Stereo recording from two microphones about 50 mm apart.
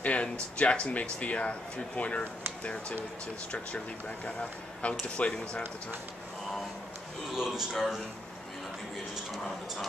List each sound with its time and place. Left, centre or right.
0.0 s speech: left
5.0 s speech: left
7.3 s speech: centre